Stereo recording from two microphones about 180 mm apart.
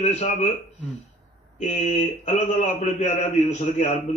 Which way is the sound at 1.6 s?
40° left (ahead or behind).